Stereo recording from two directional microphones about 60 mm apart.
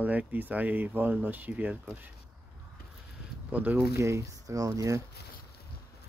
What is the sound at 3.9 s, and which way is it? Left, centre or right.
Speech, right.